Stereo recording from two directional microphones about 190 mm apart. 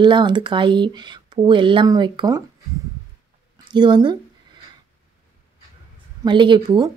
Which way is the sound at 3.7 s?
25° right (ahead or behind).